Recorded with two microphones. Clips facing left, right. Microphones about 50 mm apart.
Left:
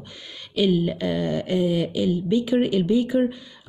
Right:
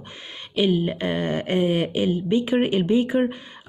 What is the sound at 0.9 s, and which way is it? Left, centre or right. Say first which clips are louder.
Speech: even; right.